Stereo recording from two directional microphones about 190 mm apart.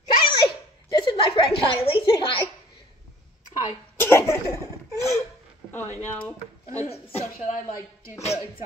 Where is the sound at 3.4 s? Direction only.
40° left (ahead or behind).